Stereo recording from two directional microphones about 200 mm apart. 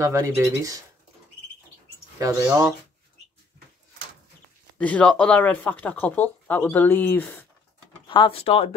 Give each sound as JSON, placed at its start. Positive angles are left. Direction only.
{"t": 0.0, "sound": "speech", "side_deg": -15}
{"t": 2.1, "sound": "speech", "side_deg": -15}
{"t": 4.7, "sound": "speech", "side_deg": 5}
{"t": 8.1, "sound": "speech", "side_deg": 25}